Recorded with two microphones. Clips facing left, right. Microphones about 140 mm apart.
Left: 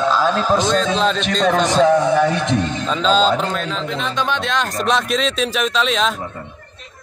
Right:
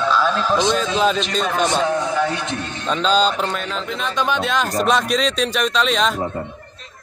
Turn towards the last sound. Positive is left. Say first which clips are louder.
# even
turn(degrees=0)  # may be behind; listen again after turning